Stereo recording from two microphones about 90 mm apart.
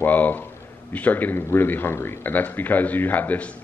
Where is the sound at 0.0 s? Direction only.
20° left (ahead or behind).